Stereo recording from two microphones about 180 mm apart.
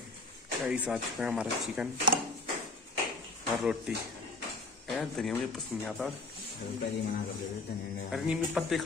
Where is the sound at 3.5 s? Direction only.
5° right (ahead or behind).